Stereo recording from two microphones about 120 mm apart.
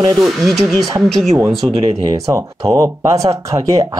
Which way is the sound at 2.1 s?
30° right (ahead or behind).